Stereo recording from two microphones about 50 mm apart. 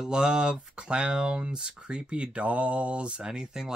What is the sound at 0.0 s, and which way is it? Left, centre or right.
Speech, centre.